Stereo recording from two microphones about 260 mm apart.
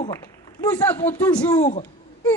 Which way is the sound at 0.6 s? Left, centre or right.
Centre.